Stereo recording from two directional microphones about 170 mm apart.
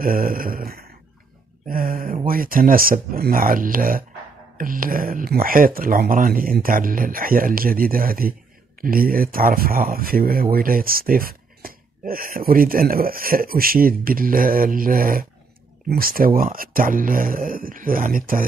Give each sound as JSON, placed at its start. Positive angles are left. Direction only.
{"t": 0.0, "sound": "speech", "side_deg": -55}